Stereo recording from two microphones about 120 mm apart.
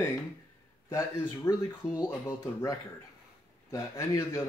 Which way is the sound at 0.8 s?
25° left (ahead or behind).